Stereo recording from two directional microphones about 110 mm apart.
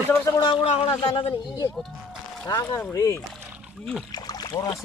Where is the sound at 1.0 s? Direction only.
45° left (ahead or behind).